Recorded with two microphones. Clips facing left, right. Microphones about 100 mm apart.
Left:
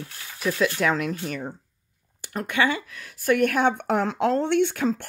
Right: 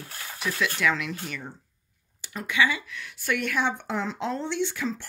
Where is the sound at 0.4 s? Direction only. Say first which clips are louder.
Left 4 dB; 40° left (ahead or behind).